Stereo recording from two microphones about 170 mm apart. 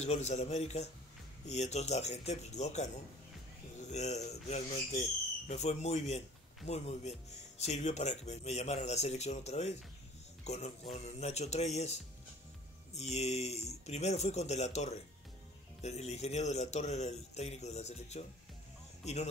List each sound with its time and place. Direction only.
0.0 s speech: 40° left (ahead or behind)
3.9 s speech: 40° left (ahead or behind)
12.9 s speech: 40° left (ahead or behind)